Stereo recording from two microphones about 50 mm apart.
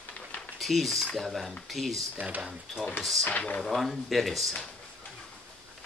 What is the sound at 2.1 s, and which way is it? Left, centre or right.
Speech, right.